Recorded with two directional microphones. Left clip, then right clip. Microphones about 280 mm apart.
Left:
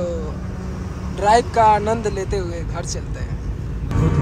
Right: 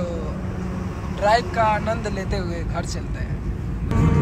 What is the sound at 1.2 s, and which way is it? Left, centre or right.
Speech, centre.